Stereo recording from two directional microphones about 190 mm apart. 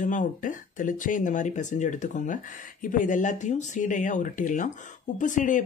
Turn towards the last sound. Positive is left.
turn(degrees=40)  # may be behind; listen again after turning